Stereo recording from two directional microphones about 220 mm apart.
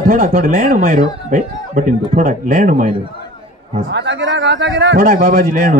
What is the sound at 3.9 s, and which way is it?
A man's voice, 55° right (ahead or behind).